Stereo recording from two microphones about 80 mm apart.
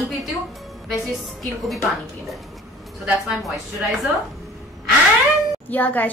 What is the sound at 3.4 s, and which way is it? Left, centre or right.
Speech, centre.